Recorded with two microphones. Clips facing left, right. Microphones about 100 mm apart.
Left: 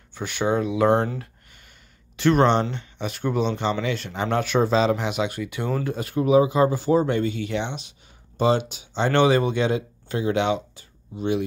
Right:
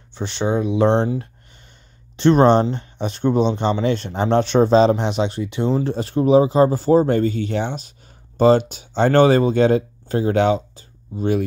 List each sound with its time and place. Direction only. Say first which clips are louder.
0.1 s speech: right 2 dB; 25° right (ahead or behind); by 11.4 s 45° right (ahead or behind)